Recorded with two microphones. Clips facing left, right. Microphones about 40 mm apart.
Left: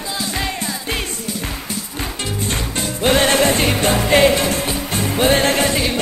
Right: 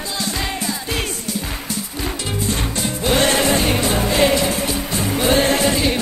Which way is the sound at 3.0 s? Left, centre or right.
Left.